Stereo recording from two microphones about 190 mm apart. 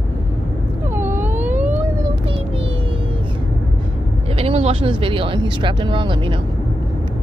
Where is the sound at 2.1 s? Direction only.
30° right (ahead or behind).